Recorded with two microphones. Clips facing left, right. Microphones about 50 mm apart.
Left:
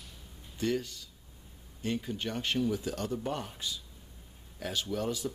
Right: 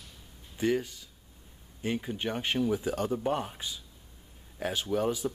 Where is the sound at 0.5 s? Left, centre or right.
Centre.